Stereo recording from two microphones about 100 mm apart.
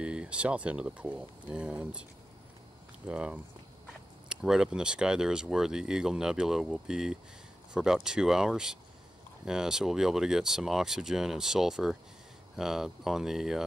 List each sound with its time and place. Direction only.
0.0 s speech: 10° right (ahead or behind)
3.1 s speech: 10° right (ahead or behind)